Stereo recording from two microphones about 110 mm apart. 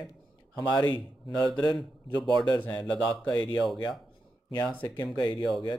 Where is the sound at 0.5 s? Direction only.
40° left (ahead or behind).